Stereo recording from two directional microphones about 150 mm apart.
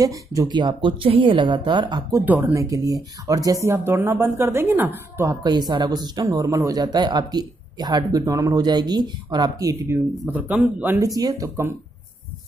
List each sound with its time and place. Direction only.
0.0 s speech: 25° right (ahead or behind)
2.2 s speech: 15° right (ahead or behind)
11.1 s speech: 25° right (ahead or behind)